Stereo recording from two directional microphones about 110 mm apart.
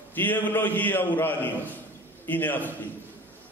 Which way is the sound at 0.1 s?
15° left (ahead or behind).